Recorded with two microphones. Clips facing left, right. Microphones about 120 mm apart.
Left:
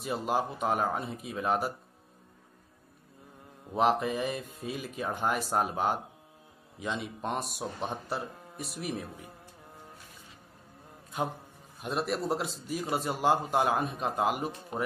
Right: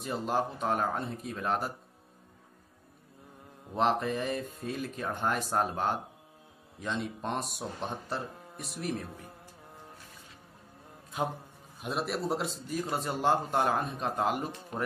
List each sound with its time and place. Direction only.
0.0 s a man's voice: 5° left (ahead or behind)
3.7 s a man's voice: 5° left (ahead or behind)
11.1 s a man's voice: centre (ahead or behind)
14.7 s speech: 15° left (ahead or behind)